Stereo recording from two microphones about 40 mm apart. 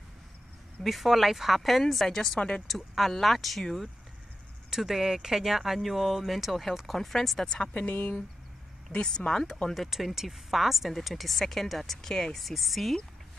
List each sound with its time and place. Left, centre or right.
0.8 s speech: centre
4.6 s speech: centre
7.9 s speech: left
8.9 s speech: left
9.8 s speech: centre
12.4 s speech: centre